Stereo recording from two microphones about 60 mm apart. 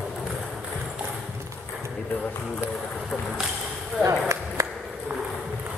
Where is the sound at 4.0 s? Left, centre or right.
Right.